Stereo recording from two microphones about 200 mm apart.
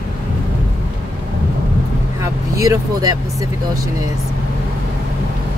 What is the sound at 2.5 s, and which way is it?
Speech, 15° right (ahead or behind).